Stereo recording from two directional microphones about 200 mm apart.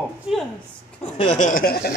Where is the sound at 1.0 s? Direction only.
35° left (ahead or behind).